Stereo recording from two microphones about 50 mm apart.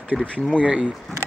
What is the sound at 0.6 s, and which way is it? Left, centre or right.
Speech, right.